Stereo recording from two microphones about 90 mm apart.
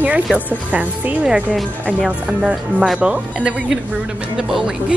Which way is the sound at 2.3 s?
10° right (ahead or behind).